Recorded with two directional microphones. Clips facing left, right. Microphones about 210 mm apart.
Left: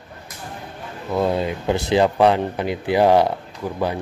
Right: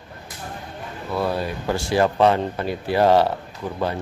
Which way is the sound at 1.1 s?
20° left (ahead or behind).